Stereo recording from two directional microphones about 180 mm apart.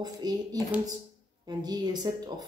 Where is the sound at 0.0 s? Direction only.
20° right (ahead or behind).